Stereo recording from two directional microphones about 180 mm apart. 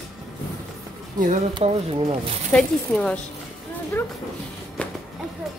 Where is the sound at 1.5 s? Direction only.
30° right (ahead or behind).